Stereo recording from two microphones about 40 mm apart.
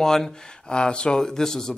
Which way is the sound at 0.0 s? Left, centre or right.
Centre.